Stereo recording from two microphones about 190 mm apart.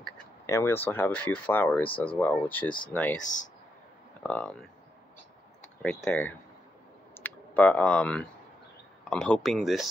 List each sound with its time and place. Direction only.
0.5 s speech: 15° left (ahead or behind)
4.2 s speech: 5° left (ahead or behind)
5.8 s speech: 5° left (ahead or behind)